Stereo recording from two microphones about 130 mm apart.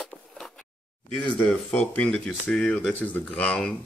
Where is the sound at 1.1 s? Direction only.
5° left (ahead or behind).